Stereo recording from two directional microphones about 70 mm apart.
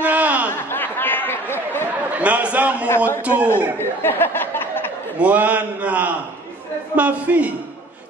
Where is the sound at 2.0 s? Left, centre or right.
Right.